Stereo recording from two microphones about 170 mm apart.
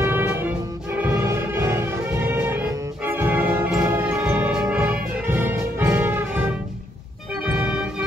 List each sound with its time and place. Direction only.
0.0 s music: 10° right (ahead or behind)